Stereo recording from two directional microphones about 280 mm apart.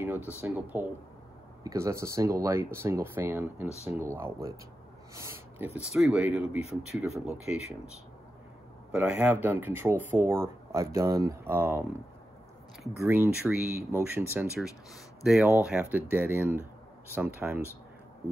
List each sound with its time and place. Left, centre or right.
0.4 s speech: centre
5.7 s speech: left
5.9 s speech: centre
6.6 s speech: left
7.5 s speech: centre
8.9 s speech: centre
13.0 s speech: centre